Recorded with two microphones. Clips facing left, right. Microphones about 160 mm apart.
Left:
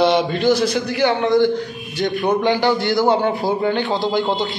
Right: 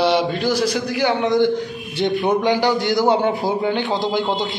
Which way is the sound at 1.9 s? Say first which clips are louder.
Right 1 dB; 25° right (ahead or behind).